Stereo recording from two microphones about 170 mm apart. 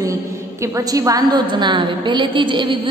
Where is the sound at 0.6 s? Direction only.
20° right (ahead or behind).